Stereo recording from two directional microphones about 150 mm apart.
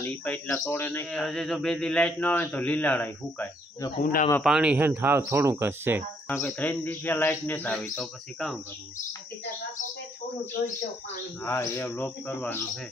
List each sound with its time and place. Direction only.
0.0 s a man's voice: 10° left (ahead or behind)
4.0 s speech: 70° left (ahead or behind)
4.4 s speech: 5° right (ahead or behind)
6.3 s a man's voice: 10° left (ahead or behind)
11.4 s a man's voice: 15° left (ahead or behind)